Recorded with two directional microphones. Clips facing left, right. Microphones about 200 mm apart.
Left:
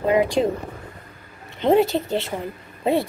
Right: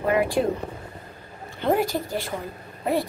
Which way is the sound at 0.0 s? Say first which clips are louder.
Left 3 dB; 20° left (ahead or behind).